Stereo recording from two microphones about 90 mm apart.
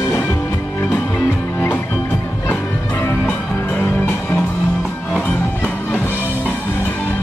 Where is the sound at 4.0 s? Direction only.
25° left (ahead or behind).